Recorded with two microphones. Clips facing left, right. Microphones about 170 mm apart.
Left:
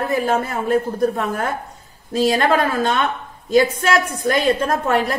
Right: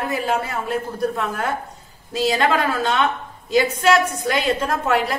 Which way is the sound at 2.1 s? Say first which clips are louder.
Left 3 dB; 50° left (ahead or behind).